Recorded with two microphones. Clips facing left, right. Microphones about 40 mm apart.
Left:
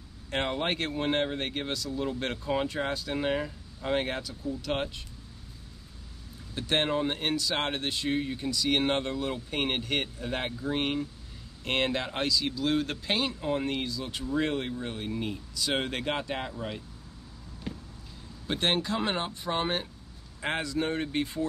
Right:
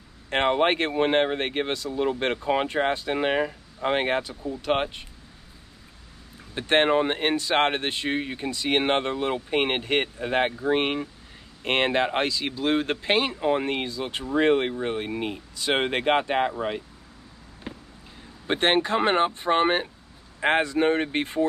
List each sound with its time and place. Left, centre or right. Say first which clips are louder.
0.3 s speech: right 8 dB; right
6.5 s speech: right 7 dB; right
17.7 s a sound: right 1 dB; right
18.5 s speech: right 6 dB; right